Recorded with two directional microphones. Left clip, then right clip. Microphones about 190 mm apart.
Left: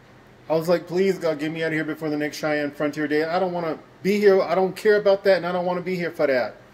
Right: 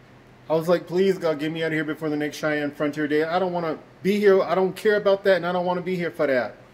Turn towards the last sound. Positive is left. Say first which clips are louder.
# left 1 dB
turn(degrees=-15)  # may be behind; listen again after turning